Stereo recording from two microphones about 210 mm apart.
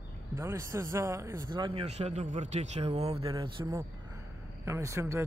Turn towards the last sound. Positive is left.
turn(degrees=-15)  # may be behind; listen again after turning